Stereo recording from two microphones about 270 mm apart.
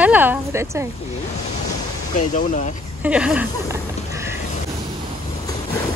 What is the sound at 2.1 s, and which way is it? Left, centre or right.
Speech, left.